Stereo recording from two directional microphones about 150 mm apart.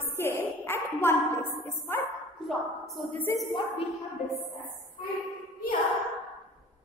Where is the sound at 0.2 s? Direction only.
15° left (ahead or behind).